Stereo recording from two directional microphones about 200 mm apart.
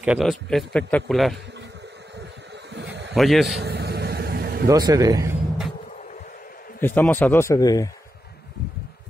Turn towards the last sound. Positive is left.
turn(degrees=15)  # may be behind; listen again after turning